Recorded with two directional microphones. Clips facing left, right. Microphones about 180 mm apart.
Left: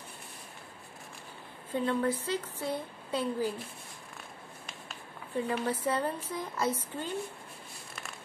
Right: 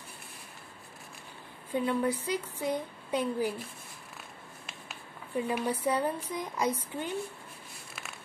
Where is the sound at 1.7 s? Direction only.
10° right (ahead or behind).